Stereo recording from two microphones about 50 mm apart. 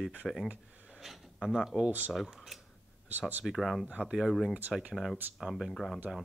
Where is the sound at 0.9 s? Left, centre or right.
Centre.